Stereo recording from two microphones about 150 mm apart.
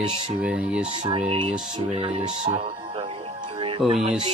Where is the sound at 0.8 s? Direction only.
35° right (ahead or behind).